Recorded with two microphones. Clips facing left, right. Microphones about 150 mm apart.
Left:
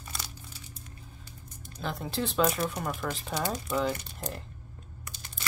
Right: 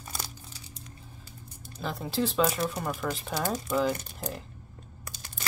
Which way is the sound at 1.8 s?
Centre (ahead or behind).